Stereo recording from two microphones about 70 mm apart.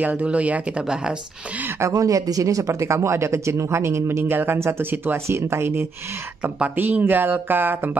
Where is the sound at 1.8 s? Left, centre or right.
Right.